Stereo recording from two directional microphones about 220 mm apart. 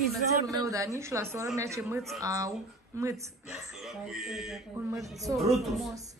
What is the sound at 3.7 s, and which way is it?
Speech, centre (ahead or behind).